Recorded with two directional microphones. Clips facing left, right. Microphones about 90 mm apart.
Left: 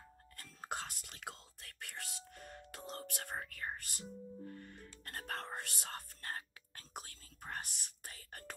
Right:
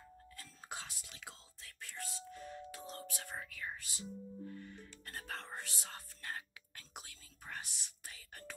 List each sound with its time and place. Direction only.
0.4 s whispering: 55° left (ahead or behind)
4.5 s music: 50° left (ahead or behind)